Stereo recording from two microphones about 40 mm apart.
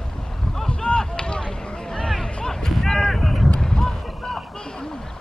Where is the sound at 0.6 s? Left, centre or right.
Centre.